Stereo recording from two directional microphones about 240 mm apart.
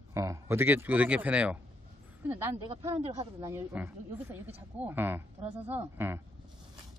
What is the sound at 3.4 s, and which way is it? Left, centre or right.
Speech, centre.